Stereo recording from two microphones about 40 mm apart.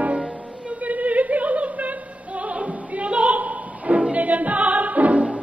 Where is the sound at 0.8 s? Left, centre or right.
Right.